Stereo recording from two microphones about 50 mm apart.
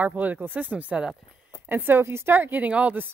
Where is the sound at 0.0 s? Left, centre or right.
Right.